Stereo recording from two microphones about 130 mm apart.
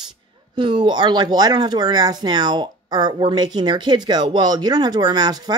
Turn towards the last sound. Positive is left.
turn(degrees=-30)  # may be behind; listen again after turning